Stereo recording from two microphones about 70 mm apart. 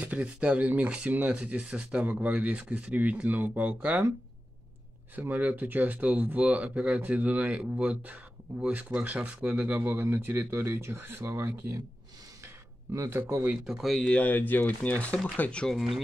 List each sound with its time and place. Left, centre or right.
0.0 s speech: centre
5.1 s speech: right
12.9 s speech: right
13.7 s speech: centre
14.0 s speech: centre
15.7 s speech: centre